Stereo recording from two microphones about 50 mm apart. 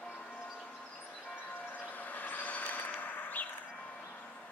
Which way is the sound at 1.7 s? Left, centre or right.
Left.